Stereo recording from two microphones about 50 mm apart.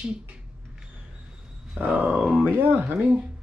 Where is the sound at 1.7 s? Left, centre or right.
Right.